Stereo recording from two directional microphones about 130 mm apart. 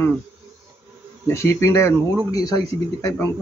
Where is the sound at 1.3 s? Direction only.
20° left (ahead or behind).